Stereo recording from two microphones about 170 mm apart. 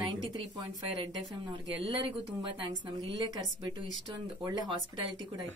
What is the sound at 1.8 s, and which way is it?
A woman's voice, 30° right (ahead or behind).